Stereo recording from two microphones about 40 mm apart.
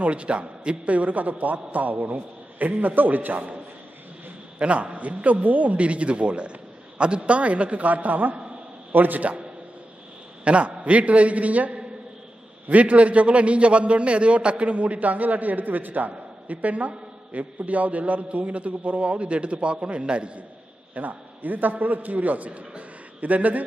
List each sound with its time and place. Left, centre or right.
0.0 s a man's voice: right
4.6 s a man's voice: right
20.9 s a man's voice: right